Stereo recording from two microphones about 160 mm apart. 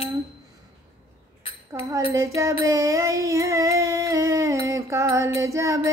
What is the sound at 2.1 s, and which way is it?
Music, 20° right (ahead or behind).